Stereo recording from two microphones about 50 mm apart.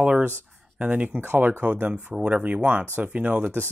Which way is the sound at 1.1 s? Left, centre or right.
Right.